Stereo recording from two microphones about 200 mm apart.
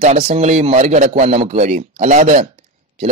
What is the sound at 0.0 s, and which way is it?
A man's voice, 35° right (ahead or behind).